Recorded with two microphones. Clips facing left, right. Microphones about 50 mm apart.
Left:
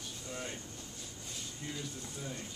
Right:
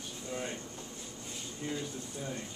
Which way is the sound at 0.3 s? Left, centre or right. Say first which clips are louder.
Right 4 dB; centre.